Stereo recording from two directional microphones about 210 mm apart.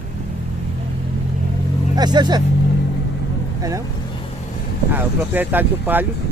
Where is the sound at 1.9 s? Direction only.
20° right (ahead or behind).